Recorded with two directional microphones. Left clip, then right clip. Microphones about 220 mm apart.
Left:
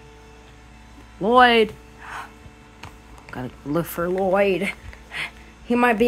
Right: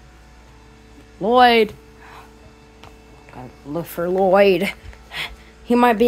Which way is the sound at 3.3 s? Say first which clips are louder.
Left 5 dB; 30° left (ahead or behind).